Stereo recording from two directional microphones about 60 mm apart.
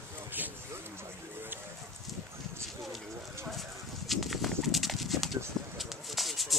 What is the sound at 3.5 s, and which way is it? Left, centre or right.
Horse, centre.